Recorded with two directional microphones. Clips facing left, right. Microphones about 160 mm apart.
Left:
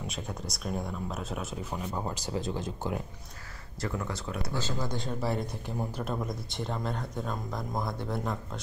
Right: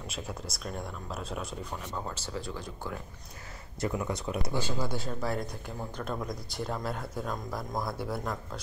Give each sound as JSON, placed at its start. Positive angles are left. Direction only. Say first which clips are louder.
{"t": 0.0, "sound": "speech", "louder": "left 1 dB", "side_deg": 0}
{"t": 2.0, "sound": "speech", "louder": "left 3 dB", "side_deg": 15}
{"t": 3.8, "sound": "speech", "louder": "right 3 dB", "side_deg": -15}